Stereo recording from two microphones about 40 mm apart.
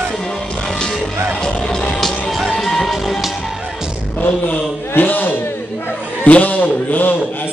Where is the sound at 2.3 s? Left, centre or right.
Centre.